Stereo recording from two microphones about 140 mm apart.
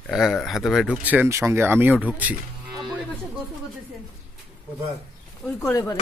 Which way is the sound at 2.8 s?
Centre (ahead or behind).